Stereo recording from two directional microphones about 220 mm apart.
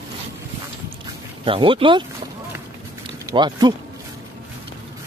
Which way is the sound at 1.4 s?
25° right (ahead or behind).